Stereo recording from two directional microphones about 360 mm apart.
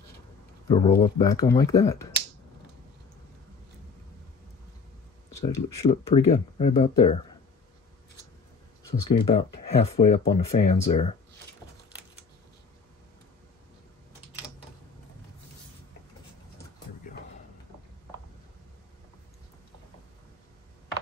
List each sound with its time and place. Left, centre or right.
0.7 s speech: centre
5.3 s speech: centre
9.1 s speech: centre
17.1 s a sound: left